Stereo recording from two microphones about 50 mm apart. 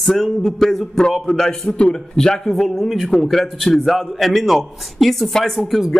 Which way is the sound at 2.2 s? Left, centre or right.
Centre.